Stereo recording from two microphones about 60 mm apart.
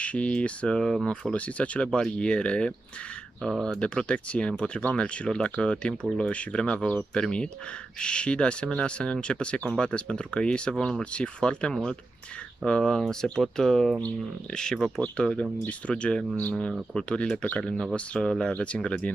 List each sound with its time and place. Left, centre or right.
0.0 s speech: left